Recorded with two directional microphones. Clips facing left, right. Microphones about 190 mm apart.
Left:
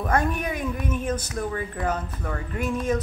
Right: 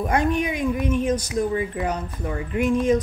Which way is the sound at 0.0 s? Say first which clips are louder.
Right 2 dB; 15° right (ahead or behind).